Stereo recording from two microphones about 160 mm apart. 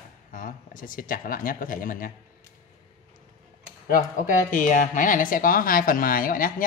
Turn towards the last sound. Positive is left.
turn(degrees=60)  # may be behind; listen again after turning